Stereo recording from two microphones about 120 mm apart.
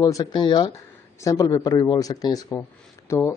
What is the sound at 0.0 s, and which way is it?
A man's voice, 35° left (ahead or behind).